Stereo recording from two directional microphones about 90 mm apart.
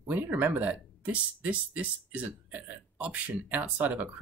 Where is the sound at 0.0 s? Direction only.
20° right (ahead or behind).